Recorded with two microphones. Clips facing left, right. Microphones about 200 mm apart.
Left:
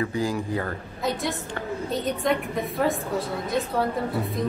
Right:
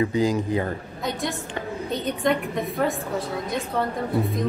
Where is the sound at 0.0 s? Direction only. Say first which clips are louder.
Right 4 dB; 20° right (ahead or behind).